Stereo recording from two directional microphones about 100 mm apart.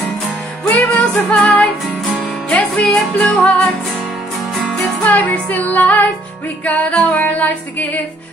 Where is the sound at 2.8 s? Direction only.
Centre (ahead or behind).